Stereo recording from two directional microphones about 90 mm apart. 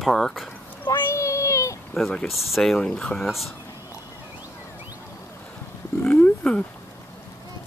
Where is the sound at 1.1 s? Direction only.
35° left (ahead or behind).